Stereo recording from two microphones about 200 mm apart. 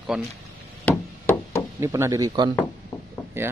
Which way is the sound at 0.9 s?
10° left (ahead or behind).